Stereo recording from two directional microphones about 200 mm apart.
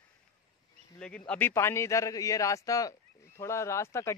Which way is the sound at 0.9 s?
5° left (ahead or behind).